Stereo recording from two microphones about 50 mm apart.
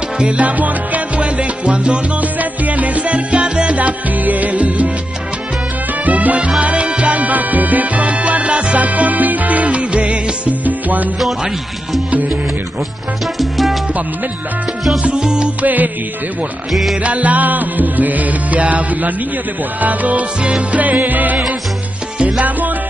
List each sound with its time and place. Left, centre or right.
0.2 s music: right
3.7 s music: right
6.0 s salsa music: right
6.6 s music: right
13.4 s music: centre
15.0 s music: centre
15.6 s music: right
17.0 s music: right